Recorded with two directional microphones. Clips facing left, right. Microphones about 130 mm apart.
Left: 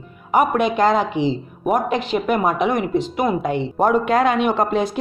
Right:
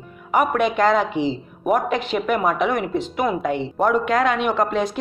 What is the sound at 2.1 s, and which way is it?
A man's voice, 25° left (ahead or behind).